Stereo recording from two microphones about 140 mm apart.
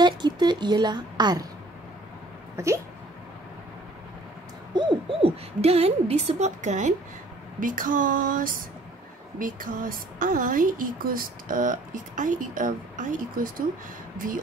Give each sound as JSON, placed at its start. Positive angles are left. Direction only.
{"t": 0.0, "sound": "a woman's voice", "side_deg": -30}
{"t": 2.5, "sound": "hiccup", "side_deg": -20}
{"t": 4.7, "sound": "owl", "side_deg": -35}
{"t": 5.6, "sound": "a woman's voice", "side_deg": -45}
{"t": 7.6, "sound": "a woman's voice", "side_deg": -75}